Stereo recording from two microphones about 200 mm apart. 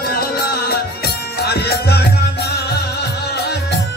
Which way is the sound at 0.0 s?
50° left (ahead or behind).